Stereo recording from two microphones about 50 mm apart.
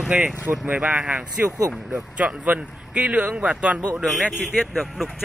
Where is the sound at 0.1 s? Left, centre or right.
Right.